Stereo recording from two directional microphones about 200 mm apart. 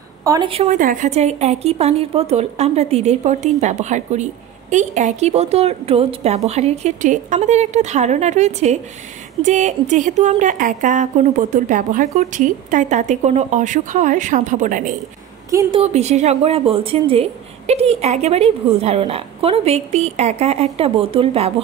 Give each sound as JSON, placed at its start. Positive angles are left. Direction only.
{"t": 0.2, "sound": "speech", "side_deg": -15}
{"t": 0.5, "sound": "a woman's voice", "side_deg": -35}